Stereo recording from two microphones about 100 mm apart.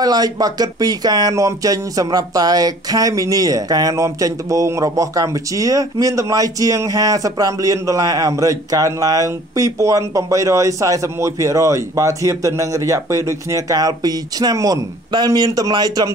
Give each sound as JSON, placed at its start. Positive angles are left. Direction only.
{"t": 0.0, "sound": "speech", "side_deg": -40}